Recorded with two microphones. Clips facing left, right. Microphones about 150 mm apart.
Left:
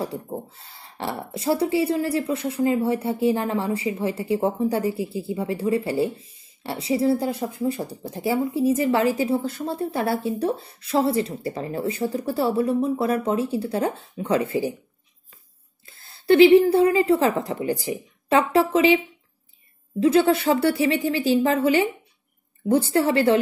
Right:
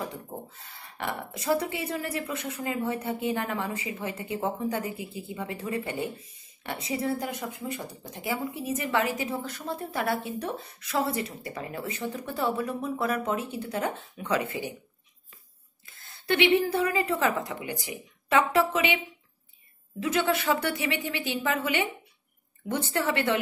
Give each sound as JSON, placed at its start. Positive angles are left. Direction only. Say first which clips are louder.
{"t": 0.0, "sound": "speech", "louder": "left 7 dB", "side_deg": 30}
{"t": 15.8, "sound": "a woman's voice", "louder": "left 2 dB", "side_deg": 30}
{"t": 20.0, "sound": "speech", "louder": "left 9 dB", "side_deg": 30}